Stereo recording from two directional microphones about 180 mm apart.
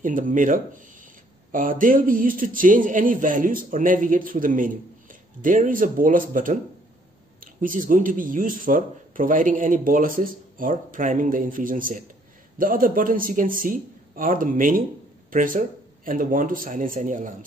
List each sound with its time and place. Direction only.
0.0 s speech: 50° right (ahead or behind)
7.6 s speech: 50° right (ahead or behind)